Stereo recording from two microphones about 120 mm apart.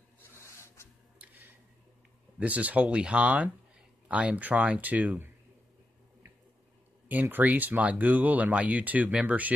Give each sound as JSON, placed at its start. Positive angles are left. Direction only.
{"t": 0.4, "sound": "a sound", "side_deg": 25}
{"t": 1.1, "sound": "tick-tock", "side_deg": -15}
{"t": 2.3, "sound": "speech", "side_deg": -10}
{"t": 7.1, "sound": "speech", "side_deg": -15}